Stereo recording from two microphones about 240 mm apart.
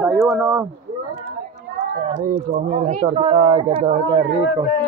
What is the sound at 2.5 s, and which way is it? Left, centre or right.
Speech, right.